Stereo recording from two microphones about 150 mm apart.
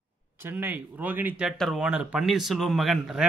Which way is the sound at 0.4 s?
15° right (ahead or behind).